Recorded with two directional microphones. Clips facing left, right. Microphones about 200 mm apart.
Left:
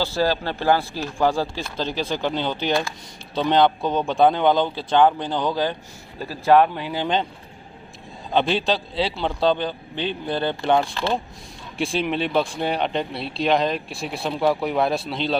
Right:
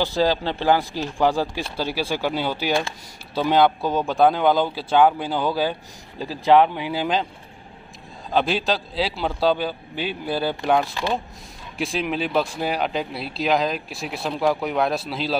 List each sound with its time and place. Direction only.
0.0 s speech: 15° right (ahead or behind)
8.3 s speech: 5° right (ahead or behind)